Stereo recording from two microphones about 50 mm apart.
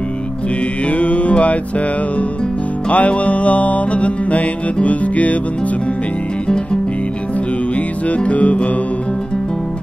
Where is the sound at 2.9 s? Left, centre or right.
Left.